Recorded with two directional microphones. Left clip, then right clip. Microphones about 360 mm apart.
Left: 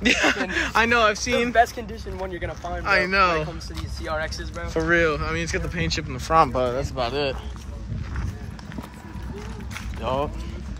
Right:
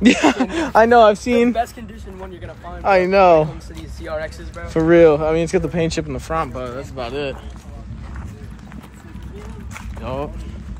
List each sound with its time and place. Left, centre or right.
0.0 s speech: centre
1.5 s speech: centre
2.8 s speech: centre
4.0 s speech: centre
4.6 s speech: centre
9.8 s boat: centre